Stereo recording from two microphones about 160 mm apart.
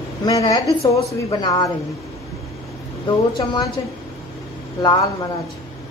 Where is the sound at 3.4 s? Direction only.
25° left (ahead or behind).